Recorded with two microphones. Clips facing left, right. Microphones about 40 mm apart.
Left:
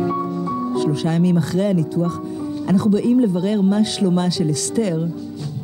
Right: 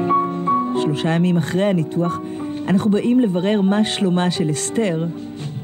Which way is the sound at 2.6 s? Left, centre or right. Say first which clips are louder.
Even; right.